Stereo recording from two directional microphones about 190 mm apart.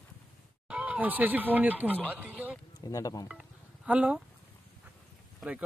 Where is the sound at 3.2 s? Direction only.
5° right (ahead or behind).